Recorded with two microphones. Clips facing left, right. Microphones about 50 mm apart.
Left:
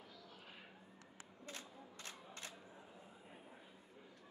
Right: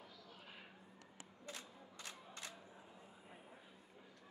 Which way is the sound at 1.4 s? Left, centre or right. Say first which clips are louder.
Even; left.